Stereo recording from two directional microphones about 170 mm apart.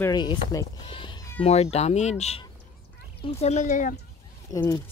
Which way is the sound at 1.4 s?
40° left (ahead or behind).